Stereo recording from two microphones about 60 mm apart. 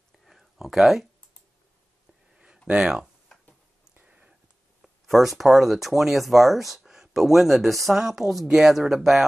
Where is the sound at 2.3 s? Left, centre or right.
Centre.